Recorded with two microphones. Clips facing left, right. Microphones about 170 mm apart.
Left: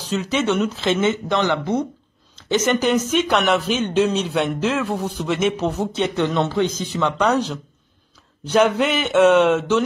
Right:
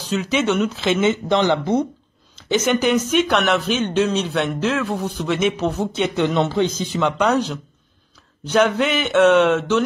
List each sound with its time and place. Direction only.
0.1 s speech: 5° right (ahead or behind)
1.0 s speech: 20° right (ahead or behind)
2.3 s speech: centre (ahead or behind)
5.9 s speech: 10° right (ahead or behind)
8.5 s speech: centre (ahead or behind)